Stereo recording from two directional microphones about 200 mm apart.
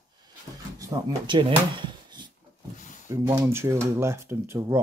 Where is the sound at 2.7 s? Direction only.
40° left (ahead or behind).